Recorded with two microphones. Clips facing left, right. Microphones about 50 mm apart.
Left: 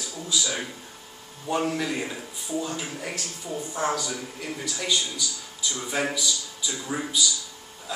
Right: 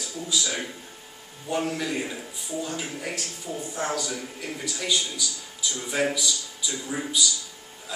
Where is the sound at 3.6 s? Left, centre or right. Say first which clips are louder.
Left 3 dB; centre.